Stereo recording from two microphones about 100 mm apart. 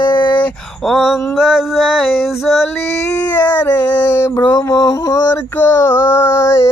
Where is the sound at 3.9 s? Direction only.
25° left (ahead or behind).